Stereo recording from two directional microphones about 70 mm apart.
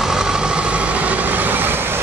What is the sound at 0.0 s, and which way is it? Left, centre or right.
Vehicle, centre.